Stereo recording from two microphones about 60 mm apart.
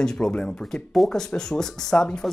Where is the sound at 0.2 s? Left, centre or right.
Centre.